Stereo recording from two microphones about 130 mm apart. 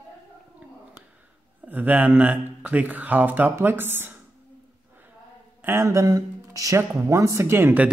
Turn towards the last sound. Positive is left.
turn(degrees=-15)  # may be behind; listen again after turning